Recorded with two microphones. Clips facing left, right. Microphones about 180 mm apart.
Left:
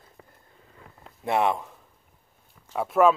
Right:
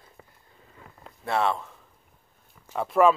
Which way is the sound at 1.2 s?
15° left (ahead or behind).